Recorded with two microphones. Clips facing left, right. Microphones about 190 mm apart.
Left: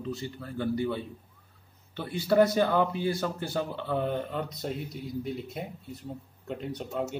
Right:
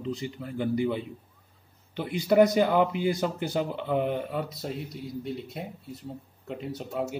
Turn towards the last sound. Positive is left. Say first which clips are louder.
# right 1 dB
turn(degrees=-5)  # may be behind; listen again after turning